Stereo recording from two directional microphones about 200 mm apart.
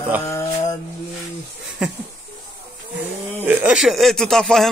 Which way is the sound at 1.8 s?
5° right (ahead or behind).